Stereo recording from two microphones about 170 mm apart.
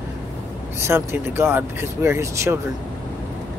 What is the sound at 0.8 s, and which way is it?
Speech, 15° right (ahead or behind).